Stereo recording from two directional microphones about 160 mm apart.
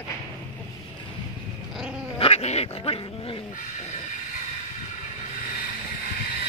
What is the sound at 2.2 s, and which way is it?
Dog, 40° left (ahead or behind).